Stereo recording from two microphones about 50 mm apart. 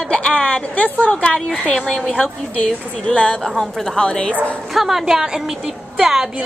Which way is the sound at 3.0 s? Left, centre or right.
Left.